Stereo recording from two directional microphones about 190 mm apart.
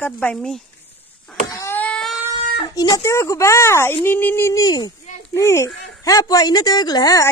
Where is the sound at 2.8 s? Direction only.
20° left (ahead or behind).